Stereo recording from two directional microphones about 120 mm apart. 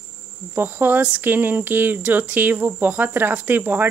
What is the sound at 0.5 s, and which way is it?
Speech, 15° right (ahead or behind).